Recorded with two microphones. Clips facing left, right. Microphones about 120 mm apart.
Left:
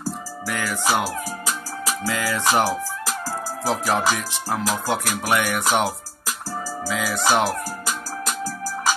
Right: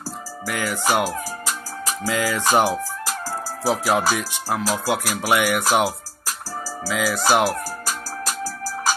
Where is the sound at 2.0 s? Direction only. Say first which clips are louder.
Right 3 dB; 15° right (ahead or behind).